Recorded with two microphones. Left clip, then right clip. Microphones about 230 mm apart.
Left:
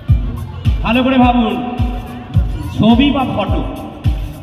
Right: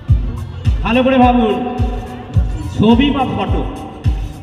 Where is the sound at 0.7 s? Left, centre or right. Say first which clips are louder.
Even; right.